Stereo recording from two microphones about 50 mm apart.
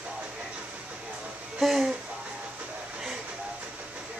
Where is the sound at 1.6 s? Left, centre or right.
Centre.